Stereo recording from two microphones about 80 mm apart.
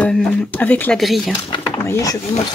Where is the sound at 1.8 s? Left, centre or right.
Left.